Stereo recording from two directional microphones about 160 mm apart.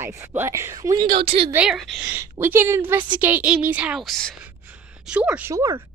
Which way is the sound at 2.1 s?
15° right (ahead or behind).